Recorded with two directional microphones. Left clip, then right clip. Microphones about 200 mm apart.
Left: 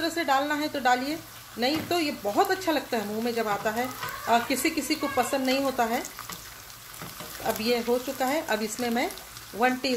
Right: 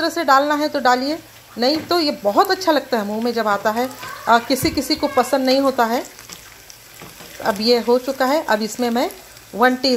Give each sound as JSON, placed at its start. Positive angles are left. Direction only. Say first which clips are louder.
{"t": 0.0, "sound": "speech", "louder": "right 10 dB", "side_deg": -25}
{"t": 7.4, "sound": "speech", "louder": "right 10 dB", "side_deg": -30}